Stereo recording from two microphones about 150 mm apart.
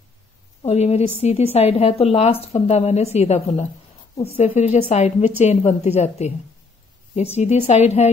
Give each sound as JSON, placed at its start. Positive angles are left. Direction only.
{"t": 0.6, "sound": "a woman's voice", "side_deg": 45}